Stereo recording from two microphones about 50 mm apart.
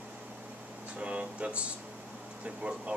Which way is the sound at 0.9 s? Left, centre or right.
Right.